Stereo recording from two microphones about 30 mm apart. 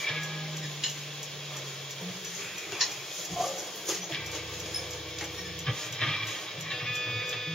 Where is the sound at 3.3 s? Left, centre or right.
Centre.